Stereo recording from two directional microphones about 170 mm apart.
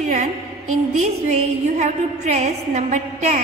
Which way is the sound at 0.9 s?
40° right (ahead or behind).